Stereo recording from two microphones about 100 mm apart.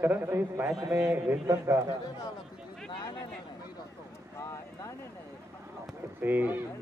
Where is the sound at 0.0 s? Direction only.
20° right (ahead or behind).